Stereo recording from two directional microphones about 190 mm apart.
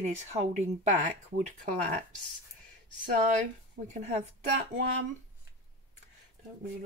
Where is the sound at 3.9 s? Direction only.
35° right (ahead or behind).